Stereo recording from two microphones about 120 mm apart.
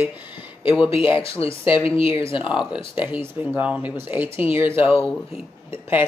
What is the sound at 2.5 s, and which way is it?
Speech, 10° right (ahead or behind).